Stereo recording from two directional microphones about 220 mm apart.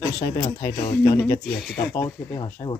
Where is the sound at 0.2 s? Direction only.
20° left (ahead or behind).